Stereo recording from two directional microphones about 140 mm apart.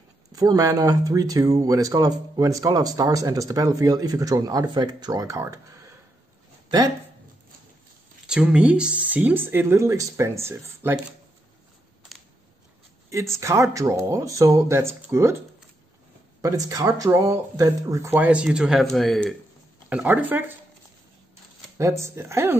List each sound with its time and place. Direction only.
0.4 s speech: 25° right (ahead or behind)
8.3 s speech: 5° right (ahead or behind)
13.4 s speech: 20° right (ahead or behind)
16.3 s speech: 25° right (ahead or behind); by 19.3 s 5° left (ahead or behind)
19.9 s speech: 10° right (ahead or behind)
21.7 s speech: 20° right (ahead or behind)